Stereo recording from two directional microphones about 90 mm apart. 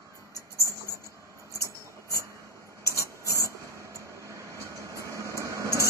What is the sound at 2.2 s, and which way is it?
Vehicle, 35° right (ahead or behind).